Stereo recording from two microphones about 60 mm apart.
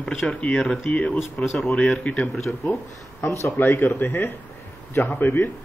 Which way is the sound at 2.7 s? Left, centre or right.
Left.